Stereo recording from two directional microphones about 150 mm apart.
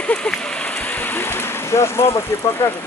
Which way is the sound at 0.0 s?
5° left (ahead or behind).